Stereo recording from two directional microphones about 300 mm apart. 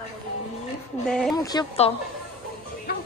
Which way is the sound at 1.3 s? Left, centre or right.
Centre.